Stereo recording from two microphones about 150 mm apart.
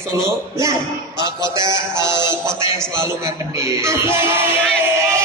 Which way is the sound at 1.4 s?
30° left (ahead or behind).